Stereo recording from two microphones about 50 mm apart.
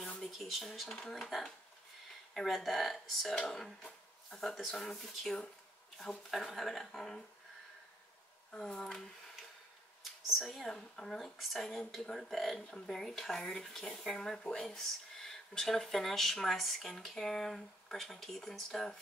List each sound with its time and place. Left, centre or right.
0.0 s speech: centre
0.8 s speech: centre
8.5 s speech: centre
10.4 s speech: centre